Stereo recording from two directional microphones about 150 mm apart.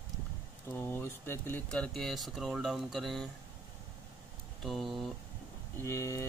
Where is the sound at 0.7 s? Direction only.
15° left (ahead or behind).